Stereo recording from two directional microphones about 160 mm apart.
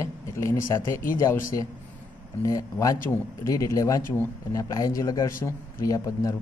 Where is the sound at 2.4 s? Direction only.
20° left (ahead or behind).